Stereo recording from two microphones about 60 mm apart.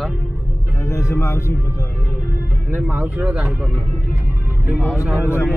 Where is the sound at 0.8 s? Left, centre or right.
Left.